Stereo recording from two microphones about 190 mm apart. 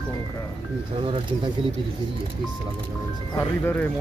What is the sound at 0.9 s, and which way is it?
Speech, 30° right (ahead or behind).